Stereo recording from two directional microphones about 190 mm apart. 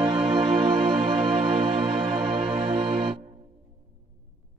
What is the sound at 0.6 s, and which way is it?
Music, 25° right (ahead or behind).